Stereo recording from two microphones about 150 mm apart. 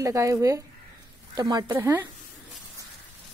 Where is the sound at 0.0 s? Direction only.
20° right (ahead or behind).